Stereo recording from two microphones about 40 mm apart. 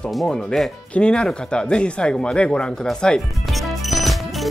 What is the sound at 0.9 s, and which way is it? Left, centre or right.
Speech, left.